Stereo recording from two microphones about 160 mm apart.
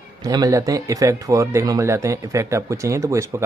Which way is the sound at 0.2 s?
20° right (ahead or behind).